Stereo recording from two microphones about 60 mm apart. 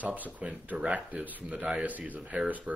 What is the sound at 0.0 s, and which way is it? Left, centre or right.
Speech, right.